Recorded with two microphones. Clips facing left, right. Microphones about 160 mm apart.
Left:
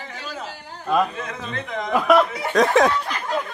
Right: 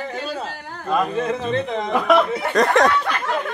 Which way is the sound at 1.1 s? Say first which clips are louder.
Right 9 dB; 30° right (ahead or behind).